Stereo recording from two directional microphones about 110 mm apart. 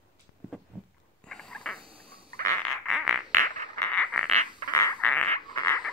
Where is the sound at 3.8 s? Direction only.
10° left (ahead or behind).